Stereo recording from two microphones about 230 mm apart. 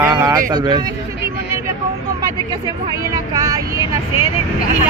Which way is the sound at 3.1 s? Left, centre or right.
Centre.